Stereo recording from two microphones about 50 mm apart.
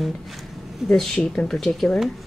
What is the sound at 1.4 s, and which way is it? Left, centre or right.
Speech, centre.